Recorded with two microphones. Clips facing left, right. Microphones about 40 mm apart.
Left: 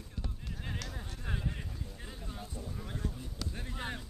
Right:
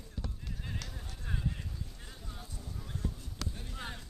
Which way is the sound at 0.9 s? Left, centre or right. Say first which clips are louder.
Left 2 dB; left.